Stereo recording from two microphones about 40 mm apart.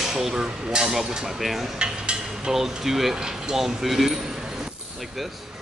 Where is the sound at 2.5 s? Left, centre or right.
Centre.